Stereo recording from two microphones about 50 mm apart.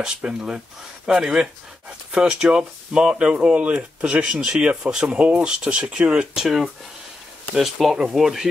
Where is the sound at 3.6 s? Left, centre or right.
Right.